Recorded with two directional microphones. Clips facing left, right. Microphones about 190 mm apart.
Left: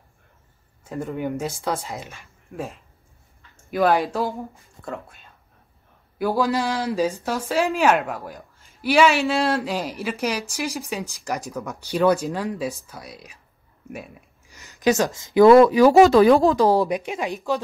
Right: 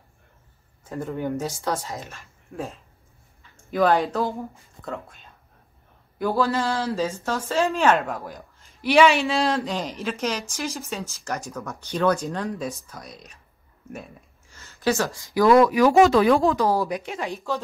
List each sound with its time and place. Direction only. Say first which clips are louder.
0.8 s speech: left 1 dB; 15° left (ahead or behind)
4.0 s speech: even; centre (ahead or behind)
6.1 s speech: left 1 dB; 15° left (ahead or behind); by 16.8 s 30° left (ahead or behind)
16.8 s speech: left 3 dB; 15° left (ahead or behind)